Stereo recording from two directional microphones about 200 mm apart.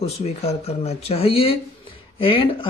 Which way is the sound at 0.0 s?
30° left (ahead or behind).